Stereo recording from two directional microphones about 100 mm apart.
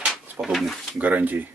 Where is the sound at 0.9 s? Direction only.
15° right (ahead or behind).